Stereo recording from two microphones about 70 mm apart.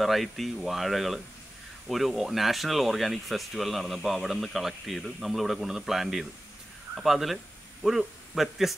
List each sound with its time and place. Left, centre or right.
0.0 s a man's voice: centre